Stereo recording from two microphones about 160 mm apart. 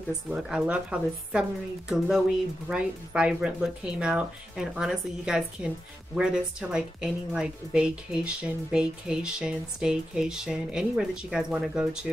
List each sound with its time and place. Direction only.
0.3 s a woman's voice: 5° right (ahead or behind)